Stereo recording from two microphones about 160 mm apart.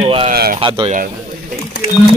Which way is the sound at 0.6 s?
30° right (ahead or behind).